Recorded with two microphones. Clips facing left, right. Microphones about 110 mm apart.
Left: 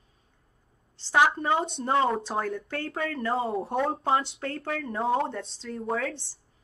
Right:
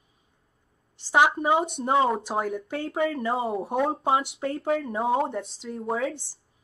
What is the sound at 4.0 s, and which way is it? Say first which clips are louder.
Speech: right 1 dB; 15° right (ahead or behind).